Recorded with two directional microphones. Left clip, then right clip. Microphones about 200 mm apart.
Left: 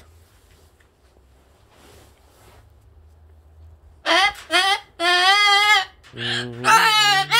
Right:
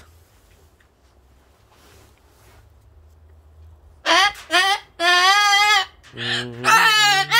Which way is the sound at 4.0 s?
10° right (ahead or behind).